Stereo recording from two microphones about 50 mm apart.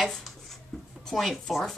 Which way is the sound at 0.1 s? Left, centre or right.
Centre.